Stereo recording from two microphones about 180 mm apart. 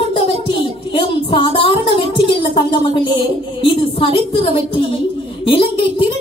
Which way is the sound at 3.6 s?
30° left (ahead or behind).